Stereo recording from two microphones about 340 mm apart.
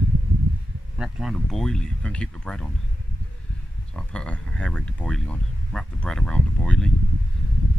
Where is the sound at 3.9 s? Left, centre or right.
Centre.